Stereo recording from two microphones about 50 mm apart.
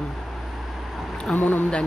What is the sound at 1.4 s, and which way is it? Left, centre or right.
Speech, left.